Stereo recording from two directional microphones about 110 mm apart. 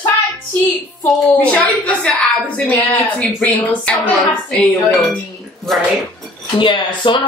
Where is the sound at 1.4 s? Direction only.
10° left (ahead or behind).